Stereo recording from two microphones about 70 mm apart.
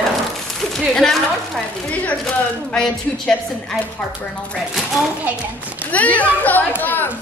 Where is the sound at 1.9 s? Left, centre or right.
Left.